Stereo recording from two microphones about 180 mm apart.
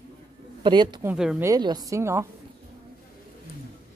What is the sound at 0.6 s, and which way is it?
Speech, 25° right (ahead or behind).